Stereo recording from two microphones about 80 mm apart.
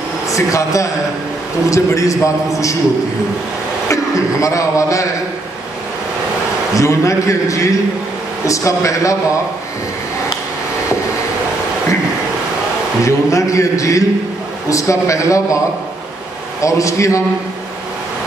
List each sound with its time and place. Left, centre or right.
0.3 s a man's voice: left
3.9 s a man's voice: left
6.7 s a man's voice: left
13.0 s a man's voice: left
16.6 s a man's voice: left